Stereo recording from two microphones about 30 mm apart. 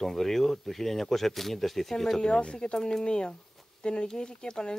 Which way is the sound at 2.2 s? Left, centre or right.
Left.